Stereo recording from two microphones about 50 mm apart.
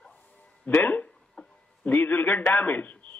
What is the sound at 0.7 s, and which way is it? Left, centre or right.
Speech, left.